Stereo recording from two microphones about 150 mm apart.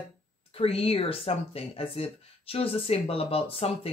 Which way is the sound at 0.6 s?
40° left (ahead or behind).